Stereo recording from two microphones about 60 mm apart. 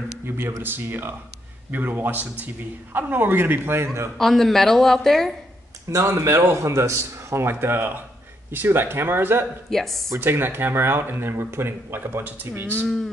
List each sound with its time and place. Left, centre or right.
0.2 s speech: right
4.2 s a woman's voice: centre
6.0 s a man's voice: right
9.7 s a woman's voice: centre
10.1 s speech: right
12.8 s a woman's voice: centre